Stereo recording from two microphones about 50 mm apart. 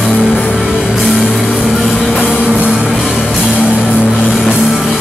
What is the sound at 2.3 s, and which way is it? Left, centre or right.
Music, right.